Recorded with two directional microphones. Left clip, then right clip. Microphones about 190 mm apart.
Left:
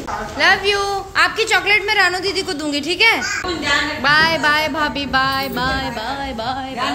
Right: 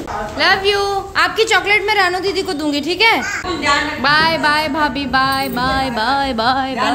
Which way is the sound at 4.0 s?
Centre (ahead or behind).